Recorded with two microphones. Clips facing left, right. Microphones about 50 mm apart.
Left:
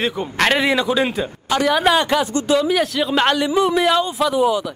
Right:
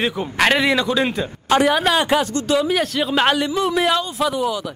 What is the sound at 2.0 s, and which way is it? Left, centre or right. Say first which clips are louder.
A man's voice: even; centre.